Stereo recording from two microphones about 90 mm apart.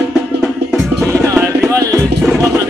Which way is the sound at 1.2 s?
40° right (ahead or behind).